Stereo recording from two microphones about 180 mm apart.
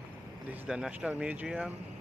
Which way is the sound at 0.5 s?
5° right (ahead or behind).